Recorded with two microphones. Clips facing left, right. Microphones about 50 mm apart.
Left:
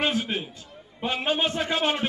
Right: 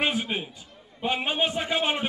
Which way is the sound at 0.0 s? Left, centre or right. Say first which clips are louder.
Left 1 dB; centre.